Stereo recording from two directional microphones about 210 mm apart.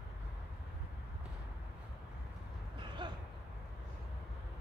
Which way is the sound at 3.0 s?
20° right (ahead or behind).